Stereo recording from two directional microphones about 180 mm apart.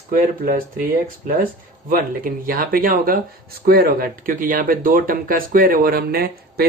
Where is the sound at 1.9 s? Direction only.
55° right (ahead or behind).